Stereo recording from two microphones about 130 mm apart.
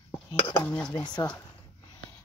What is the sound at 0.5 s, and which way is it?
Speech, 10° left (ahead or behind).